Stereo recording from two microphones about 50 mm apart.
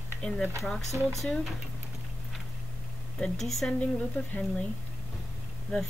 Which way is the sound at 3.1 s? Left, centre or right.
Centre.